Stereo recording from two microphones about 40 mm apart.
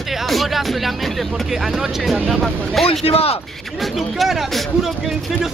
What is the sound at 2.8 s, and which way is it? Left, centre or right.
Speech, centre.